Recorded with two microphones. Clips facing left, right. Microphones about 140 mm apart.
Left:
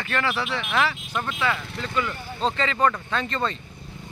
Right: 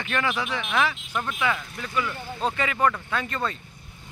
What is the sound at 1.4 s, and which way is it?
Speech, 15° right (ahead or behind).